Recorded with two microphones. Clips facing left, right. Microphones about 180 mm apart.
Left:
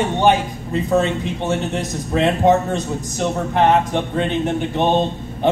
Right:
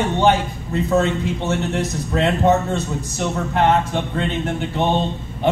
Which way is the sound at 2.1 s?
15° left (ahead or behind).